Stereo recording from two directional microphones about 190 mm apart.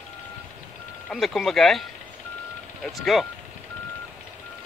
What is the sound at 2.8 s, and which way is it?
Speech, centre (ahead or behind).